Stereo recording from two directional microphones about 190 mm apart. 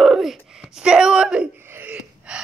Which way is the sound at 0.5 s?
5° right (ahead or behind).